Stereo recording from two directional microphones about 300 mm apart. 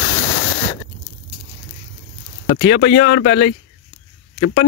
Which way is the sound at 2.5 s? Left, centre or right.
Left.